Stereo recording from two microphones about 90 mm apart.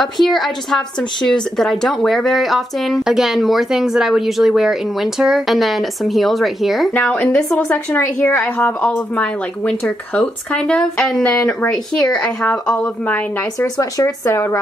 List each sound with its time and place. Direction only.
0.0 s speech: centre (ahead or behind)
6.9 s a woman's voice: 15° left (ahead or behind)
7.7 s a woman's voice: 25° left (ahead or behind)
13.7 s speech: 35° left (ahead or behind)